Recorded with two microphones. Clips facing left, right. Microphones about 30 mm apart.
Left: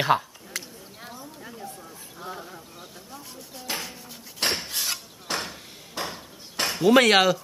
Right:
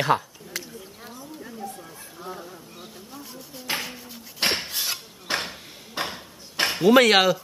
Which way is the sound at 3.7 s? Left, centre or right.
Right.